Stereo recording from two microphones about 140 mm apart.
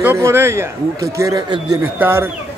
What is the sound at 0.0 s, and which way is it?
A man's voice, 15° right (ahead or behind).